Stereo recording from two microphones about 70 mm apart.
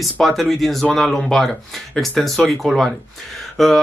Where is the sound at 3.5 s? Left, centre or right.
Centre.